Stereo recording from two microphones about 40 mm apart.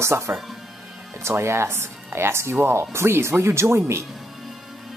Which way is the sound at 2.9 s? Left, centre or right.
Right.